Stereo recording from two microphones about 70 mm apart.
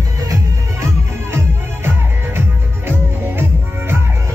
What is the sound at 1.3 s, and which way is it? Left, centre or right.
Music, right.